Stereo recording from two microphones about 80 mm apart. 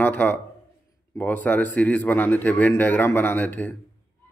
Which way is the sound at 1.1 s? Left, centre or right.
Left.